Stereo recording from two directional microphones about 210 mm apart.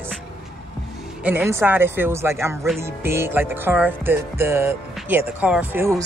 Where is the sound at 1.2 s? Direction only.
5° right (ahead or behind).